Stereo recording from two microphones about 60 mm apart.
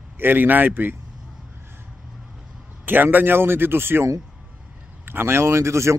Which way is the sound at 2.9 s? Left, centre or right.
Right.